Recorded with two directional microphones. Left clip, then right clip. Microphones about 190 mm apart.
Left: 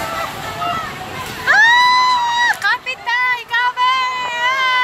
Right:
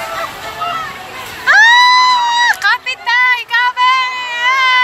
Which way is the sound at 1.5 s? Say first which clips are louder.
Right 4 dB; 20° left (ahead or behind).